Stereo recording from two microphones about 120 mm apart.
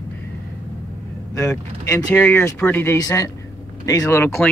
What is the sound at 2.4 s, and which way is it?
Speech, 20° left (ahead or behind).